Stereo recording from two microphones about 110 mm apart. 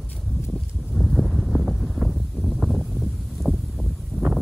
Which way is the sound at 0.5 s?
Centre (ahead or behind).